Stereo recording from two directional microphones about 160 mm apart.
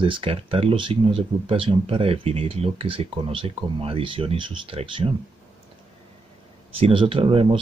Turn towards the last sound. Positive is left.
turn(degrees=-35)  # may be behind; listen again after turning